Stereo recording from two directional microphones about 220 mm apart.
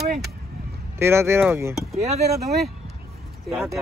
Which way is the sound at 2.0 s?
30° right (ahead or behind).